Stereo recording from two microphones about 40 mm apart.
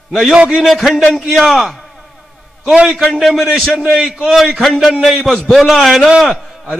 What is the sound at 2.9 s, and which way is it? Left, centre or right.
Speech, centre.